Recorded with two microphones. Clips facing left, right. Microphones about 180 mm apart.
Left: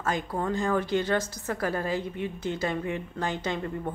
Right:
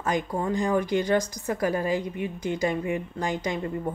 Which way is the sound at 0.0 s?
15° right (ahead or behind).